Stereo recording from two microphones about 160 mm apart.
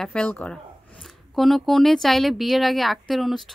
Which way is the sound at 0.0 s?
5° left (ahead or behind).